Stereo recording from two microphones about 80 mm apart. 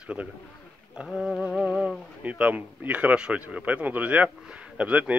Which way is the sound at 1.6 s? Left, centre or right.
Centre.